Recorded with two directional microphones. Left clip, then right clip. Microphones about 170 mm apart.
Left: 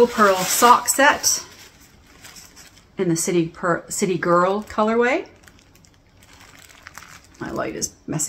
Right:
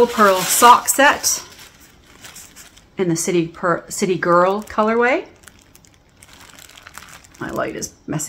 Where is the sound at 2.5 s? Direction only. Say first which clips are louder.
Right 3 dB; 15° right (ahead or behind).